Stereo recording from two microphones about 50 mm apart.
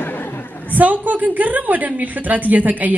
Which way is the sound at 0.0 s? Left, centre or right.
Left.